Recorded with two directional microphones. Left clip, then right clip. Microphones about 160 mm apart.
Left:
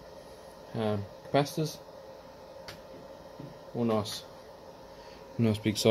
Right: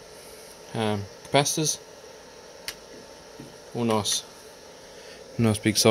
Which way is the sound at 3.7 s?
75° right (ahead or behind).